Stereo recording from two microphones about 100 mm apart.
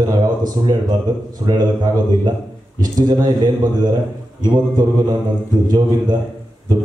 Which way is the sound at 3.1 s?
45° right (ahead or behind).